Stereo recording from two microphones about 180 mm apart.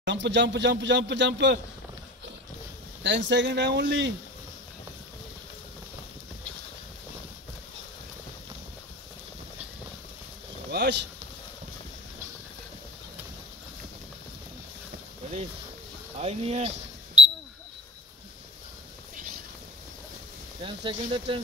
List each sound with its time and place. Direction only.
0.0 s speech: 75° right (ahead or behind)
3.0 s speech: 80° right
10.7 s speech: 70° right (ahead or behind)
16.2 s speech: 35° right (ahead or behind)
20.6 s speech: 30° right (ahead or behind)